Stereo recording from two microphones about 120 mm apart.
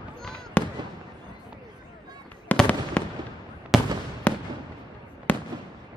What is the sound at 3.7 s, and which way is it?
Fireworks, centre (ahead or behind).